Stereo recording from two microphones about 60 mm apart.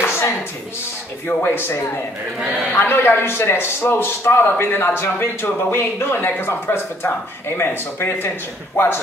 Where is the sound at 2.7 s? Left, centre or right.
Left.